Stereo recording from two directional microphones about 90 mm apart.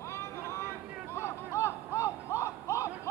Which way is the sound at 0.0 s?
30° left (ahead or behind).